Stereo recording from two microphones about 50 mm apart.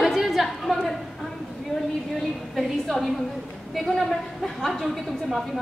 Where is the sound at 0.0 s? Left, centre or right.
Centre.